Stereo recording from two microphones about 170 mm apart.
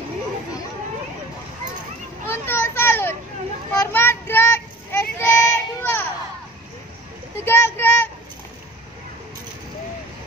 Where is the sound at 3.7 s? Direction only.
15° left (ahead or behind).